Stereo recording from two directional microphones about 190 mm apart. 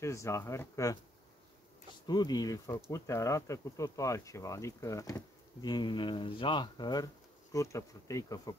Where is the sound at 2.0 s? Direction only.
20° left (ahead or behind).